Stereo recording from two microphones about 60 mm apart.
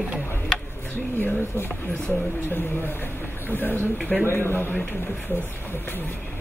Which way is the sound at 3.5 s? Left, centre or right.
Left.